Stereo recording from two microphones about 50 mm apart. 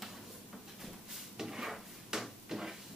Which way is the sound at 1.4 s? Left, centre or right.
Centre.